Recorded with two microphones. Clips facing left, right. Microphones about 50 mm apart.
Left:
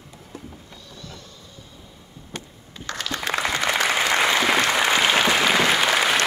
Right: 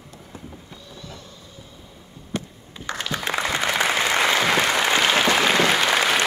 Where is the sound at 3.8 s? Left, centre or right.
Centre.